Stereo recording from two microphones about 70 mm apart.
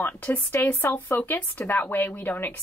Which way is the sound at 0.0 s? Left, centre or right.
Left.